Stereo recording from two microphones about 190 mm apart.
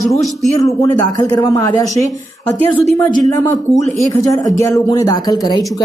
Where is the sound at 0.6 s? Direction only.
20° left (ahead or behind).